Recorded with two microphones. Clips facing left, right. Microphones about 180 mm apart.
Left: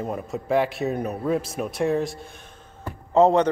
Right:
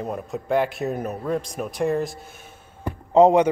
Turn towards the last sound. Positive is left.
turn(degrees=-15)  # may be behind; listen again after turning